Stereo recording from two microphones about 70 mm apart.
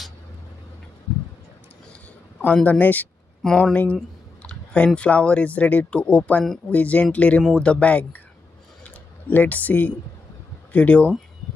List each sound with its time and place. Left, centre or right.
2.4 s speech: left
3.4 s speech: centre
3.7 s speech: left
8.8 s a sound: left
10.7 s speech: left